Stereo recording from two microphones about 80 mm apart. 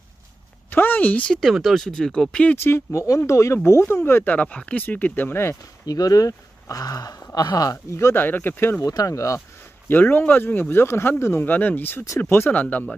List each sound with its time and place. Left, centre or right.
0.7 s speech: left
1.4 s speech: centre
2.5 s speech: left
3.8 s speech: left
5.9 s speech: left
8.2 s speech: left
8.8 s speech: left
9.8 s speech: left